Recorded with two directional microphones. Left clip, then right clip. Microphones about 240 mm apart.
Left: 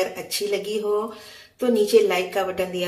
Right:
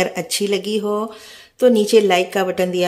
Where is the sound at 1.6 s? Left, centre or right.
Right.